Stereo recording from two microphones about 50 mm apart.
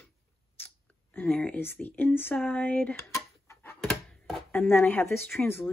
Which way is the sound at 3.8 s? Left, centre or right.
Centre.